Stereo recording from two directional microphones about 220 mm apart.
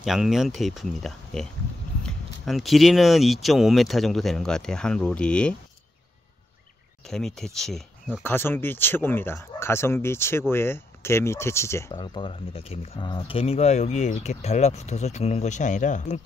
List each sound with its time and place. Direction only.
0.0 s speech: centre (ahead or behind)
7.1 s speech: centre (ahead or behind); by 16.3 s 35° left (ahead or behind)